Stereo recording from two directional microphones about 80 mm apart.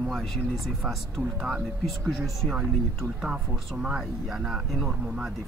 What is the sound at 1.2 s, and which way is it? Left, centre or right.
Speech, centre.